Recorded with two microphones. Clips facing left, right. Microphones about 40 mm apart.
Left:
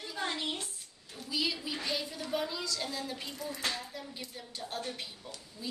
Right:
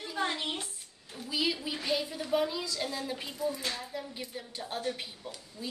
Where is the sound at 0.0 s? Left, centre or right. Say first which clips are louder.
Right 3 dB; centre.